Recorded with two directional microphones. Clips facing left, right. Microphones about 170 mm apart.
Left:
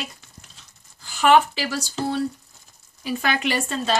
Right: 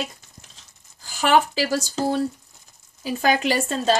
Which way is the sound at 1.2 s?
35° right (ahead or behind).